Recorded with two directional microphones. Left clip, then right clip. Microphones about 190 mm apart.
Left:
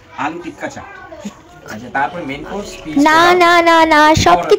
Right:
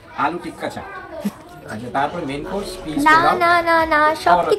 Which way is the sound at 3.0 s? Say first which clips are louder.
Left 4 dB; 40° left (ahead or behind).